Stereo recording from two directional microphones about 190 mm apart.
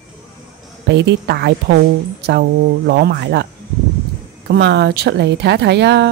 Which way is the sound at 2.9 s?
60° right (ahead or behind).